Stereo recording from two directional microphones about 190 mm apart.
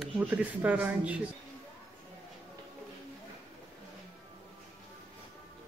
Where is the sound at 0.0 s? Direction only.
5° right (ahead or behind).